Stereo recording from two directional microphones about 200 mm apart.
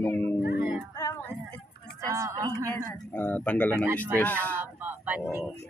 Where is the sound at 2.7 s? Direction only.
10° left (ahead or behind).